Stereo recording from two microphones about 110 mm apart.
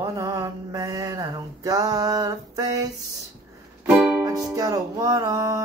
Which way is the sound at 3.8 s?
10° right (ahead or behind).